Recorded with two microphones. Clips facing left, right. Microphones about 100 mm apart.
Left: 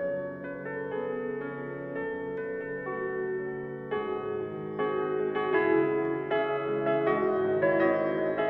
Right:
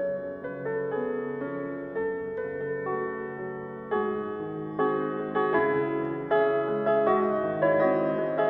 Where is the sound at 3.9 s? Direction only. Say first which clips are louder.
Right 3 dB; 25° right (ahead or behind).